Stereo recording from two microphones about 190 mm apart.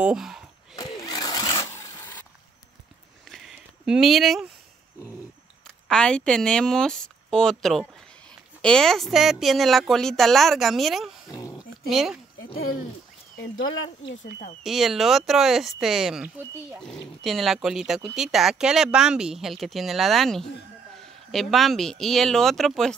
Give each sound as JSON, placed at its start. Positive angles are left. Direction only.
{"t": 0.0, "sound": "speech", "side_deg": -5}
{"t": 1.0, "sound": "sewing machine", "side_deg": 20}
{"t": 3.3, "sound": "a sound", "side_deg": 0}
{"t": 5.9, "sound": "speech", "side_deg": 5}
{"t": 11.5, "sound": "dog", "side_deg": -5}
{"t": 14.6, "sound": "speech", "side_deg": 0}